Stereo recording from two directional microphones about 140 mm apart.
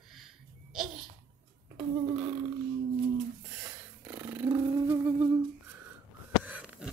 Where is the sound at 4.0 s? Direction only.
15° right (ahead or behind).